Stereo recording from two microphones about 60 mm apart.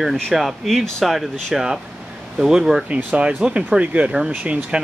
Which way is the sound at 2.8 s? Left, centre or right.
Centre.